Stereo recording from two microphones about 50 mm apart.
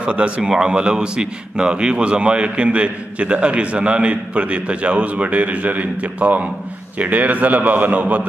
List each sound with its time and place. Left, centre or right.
0.0 s a man's voice: right